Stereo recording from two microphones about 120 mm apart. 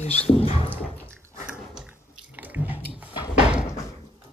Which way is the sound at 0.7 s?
15° left (ahead or behind).